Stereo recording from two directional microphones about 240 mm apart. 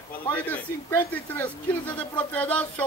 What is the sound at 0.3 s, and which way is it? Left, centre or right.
Speech, centre.